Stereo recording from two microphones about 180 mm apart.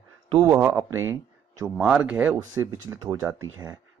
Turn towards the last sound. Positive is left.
turn(degrees=-15)  # may be behind; listen again after turning